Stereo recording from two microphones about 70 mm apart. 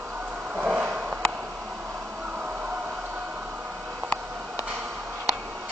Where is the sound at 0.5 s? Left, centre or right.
Right.